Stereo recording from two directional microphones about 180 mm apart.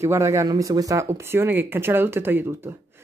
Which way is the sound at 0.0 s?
15° right (ahead or behind).